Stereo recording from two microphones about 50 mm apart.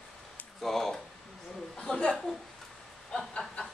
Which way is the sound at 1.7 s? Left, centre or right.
Centre.